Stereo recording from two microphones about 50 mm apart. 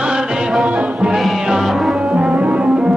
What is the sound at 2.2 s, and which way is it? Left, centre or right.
Music, right.